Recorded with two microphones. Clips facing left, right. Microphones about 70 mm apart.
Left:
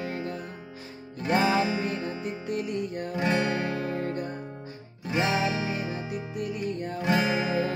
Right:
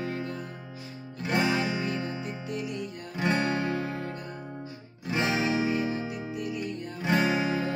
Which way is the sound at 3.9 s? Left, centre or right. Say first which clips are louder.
Left 5 dB; left.